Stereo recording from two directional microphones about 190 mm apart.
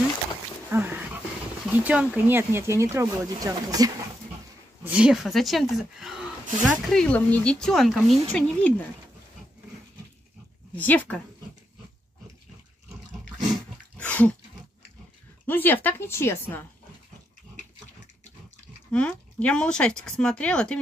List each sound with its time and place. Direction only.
0.7 s dog: 10° right (ahead or behind)
1.8 s speech: 5° right (ahead or behind)
4.8 s speech: 5° right (ahead or behind)
10.7 s speech: 10° left (ahead or behind)
13.9 s dog: 5° left (ahead or behind)
15.4 s speech: 10° left (ahead or behind)
18.9 s speech: 5° left (ahead or behind)